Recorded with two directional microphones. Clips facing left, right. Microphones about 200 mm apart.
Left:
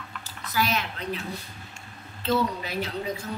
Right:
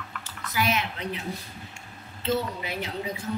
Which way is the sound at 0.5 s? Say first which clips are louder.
Even; 20° right (ahead or behind).